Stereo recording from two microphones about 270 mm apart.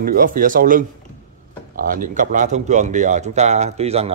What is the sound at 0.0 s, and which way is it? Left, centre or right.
A man's voice, right.